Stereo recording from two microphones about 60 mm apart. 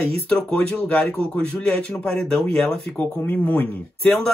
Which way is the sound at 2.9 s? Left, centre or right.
Left.